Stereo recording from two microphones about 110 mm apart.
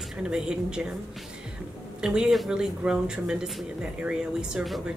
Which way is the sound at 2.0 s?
5° right (ahead or behind).